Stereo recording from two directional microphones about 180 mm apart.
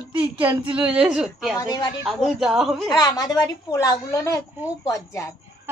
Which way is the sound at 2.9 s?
20° left (ahead or behind).